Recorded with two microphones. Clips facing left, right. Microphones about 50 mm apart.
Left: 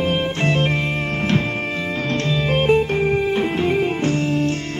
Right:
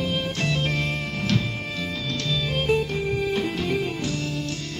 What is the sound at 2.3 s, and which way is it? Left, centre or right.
Music, left.